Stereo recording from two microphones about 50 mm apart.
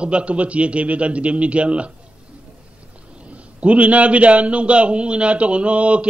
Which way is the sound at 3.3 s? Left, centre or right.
Right.